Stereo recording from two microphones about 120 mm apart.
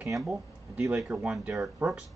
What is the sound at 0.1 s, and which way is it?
Speech, 5° right (ahead or behind).